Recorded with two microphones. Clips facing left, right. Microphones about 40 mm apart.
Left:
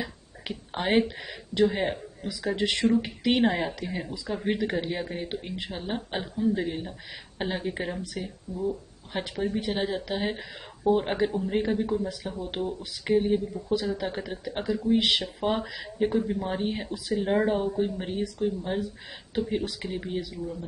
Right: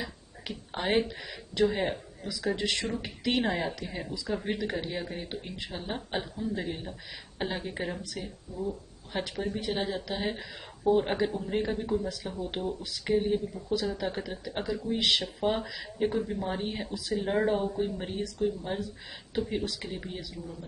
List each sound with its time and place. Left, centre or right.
0.0 s speech: centre